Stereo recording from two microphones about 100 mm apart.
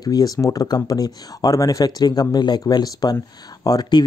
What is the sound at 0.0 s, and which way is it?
Speech, 40° left (ahead or behind).